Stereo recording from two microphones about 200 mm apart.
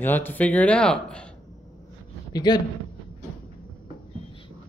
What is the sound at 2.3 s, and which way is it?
Speech, 20° left (ahead or behind).